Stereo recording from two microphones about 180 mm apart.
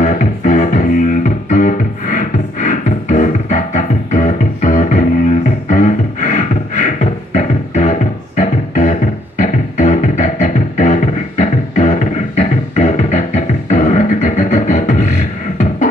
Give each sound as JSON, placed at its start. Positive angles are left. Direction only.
{"t": 0.0, "sound": "music", "side_deg": 45}